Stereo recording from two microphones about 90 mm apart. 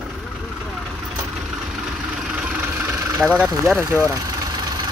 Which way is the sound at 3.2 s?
10° right (ahead or behind).